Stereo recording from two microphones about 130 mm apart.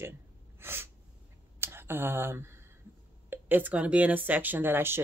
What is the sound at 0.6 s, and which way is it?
Gasp, 15° right (ahead or behind).